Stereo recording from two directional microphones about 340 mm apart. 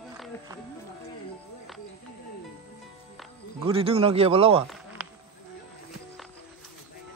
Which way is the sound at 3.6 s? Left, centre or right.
Centre.